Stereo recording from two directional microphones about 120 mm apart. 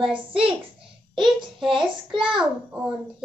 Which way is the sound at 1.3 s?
45° right (ahead or behind).